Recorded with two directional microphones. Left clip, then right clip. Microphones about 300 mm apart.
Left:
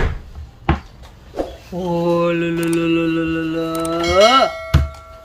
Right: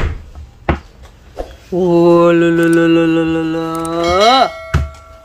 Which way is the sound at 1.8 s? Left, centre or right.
Right.